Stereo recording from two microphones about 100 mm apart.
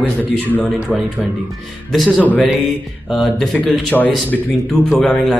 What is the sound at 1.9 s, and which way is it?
Speech, centre (ahead or behind).